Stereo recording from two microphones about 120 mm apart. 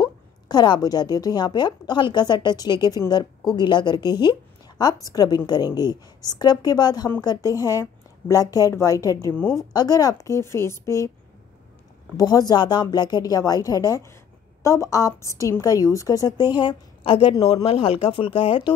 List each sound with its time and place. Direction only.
0.0 s a woman's voice: 35° left (ahead or behind)
12.2 s a woman's voice: 30° left (ahead or behind)
16.4 s a woman's voice: 40° left (ahead or behind)